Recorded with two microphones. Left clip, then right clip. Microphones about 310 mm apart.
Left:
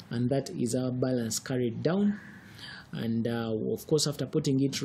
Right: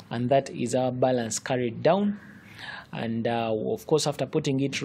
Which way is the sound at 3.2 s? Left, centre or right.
Centre.